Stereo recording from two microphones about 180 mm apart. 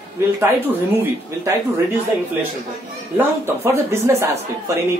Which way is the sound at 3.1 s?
15° right (ahead or behind).